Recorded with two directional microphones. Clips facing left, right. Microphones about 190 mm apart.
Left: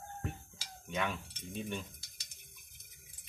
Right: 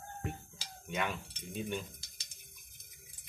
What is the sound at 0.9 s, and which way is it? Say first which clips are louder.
Speech: even; 5° right (ahead or behind).